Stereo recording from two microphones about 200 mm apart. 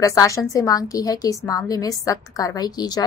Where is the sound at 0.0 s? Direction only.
15° left (ahead or behind).